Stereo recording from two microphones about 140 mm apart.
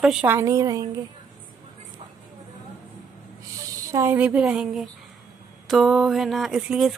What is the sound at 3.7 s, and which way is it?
Speech, 20° right (ahead or behind).